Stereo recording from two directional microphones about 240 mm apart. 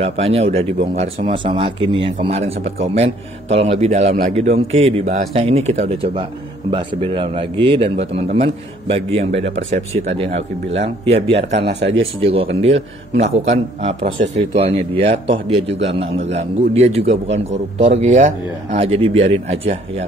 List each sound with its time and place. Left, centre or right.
0.0 s speech: right